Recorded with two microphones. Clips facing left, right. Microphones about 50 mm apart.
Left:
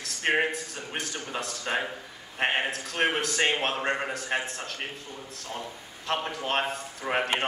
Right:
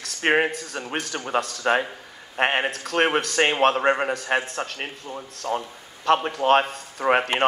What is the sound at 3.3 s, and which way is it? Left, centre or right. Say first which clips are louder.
A man's voice: right 7 dB; right.